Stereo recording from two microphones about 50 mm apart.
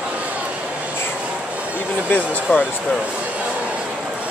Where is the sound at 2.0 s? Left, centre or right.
Left.